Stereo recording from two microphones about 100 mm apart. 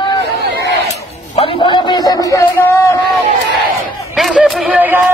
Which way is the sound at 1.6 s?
50° left (ahead or behind).